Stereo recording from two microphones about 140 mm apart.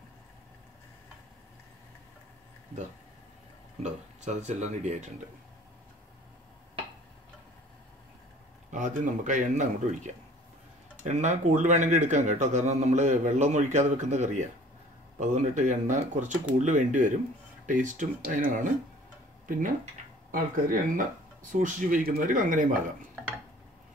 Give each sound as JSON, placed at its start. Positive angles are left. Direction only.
{"t": 3.8, "sound": "speech", "side_deg": -55}
{"t": 8.6, "sound": "speech", "side_deg": -60}